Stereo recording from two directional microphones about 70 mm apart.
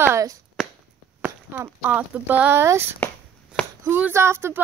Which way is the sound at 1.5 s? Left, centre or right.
Right.